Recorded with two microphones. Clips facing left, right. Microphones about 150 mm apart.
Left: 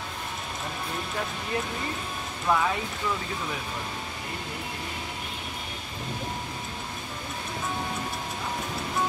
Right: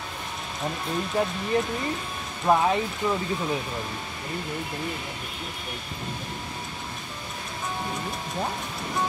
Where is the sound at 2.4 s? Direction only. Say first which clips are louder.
Right 4 dB; 30° right (ahead or behind).